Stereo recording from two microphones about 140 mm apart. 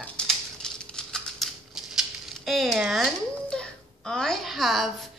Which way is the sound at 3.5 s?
5° left (ahead or behind).